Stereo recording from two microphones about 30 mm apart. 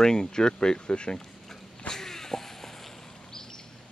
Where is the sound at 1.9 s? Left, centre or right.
Centre.